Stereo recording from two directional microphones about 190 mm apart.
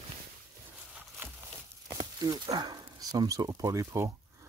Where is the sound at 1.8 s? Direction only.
15° right (ahead or behind).